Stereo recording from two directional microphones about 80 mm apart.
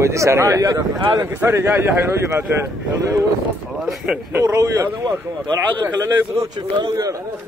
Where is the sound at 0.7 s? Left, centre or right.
Right.